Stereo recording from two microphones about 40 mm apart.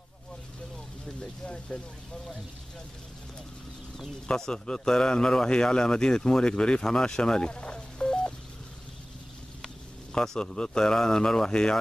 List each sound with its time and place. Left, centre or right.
1.2 s speech: centre
4.4 s a man's voice: centre
10.2 s a man's voice: centre